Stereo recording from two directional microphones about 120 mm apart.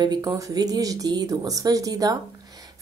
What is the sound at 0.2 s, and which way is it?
Speech, 25° right (ahead or behind).